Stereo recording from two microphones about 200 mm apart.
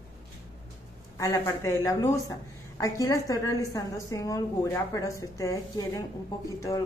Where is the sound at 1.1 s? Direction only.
15° left (ahead or behind).